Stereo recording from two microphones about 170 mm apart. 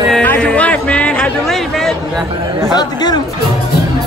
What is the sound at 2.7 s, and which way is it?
Speech, 25° left (ahead or behind).